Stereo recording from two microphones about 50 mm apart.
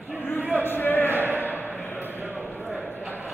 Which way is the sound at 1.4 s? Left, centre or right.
Left.